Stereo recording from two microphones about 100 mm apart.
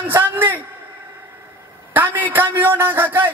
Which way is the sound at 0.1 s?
20° right (ahead or behind).